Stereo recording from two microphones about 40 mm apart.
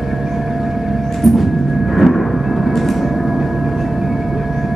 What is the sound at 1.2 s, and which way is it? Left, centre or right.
Train, centre.